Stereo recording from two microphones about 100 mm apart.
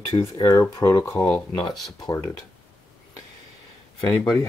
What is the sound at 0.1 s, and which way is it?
Speech, 65° left (ahead or behind).